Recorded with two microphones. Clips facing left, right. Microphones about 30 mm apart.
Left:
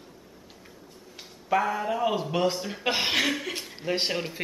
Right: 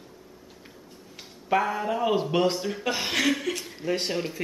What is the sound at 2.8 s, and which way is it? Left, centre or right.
A woman's voice, left.